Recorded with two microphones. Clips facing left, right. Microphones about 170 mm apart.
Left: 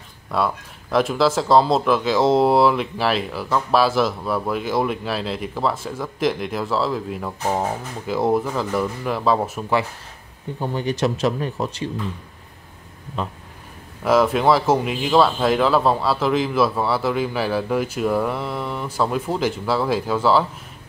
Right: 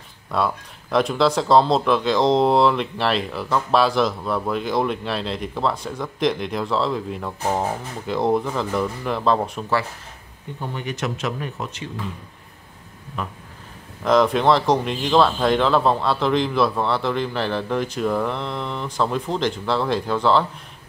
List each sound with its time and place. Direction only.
0.3 s speech: centre (ahead or behind)
10.6 s speech: 35° left (ahead or behind)
13.2 s a sound: 25° left (ahead or behind)
14.0 s speech: 5° left (ahead or behind)